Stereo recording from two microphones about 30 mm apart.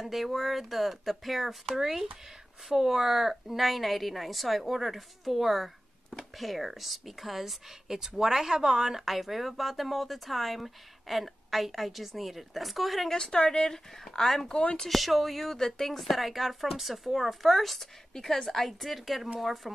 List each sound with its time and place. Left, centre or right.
0.0 s speech: centre
1.8 s speech: centre
13.1 s a woman's voice: left
13.5 s speech: centre